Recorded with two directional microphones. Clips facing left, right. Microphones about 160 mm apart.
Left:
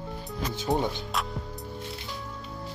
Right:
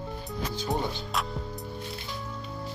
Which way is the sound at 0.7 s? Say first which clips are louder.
Left 4 dB; 20° left (ahead or behind).